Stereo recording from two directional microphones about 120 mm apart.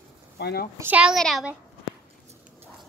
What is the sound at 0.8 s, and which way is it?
Speech, 10° right (ahead or behind).